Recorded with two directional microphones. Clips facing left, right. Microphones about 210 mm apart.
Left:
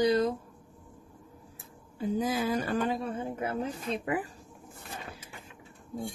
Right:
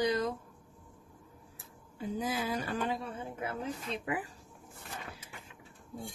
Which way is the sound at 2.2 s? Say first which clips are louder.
Left 4 dB; 45° left (ahead or behind).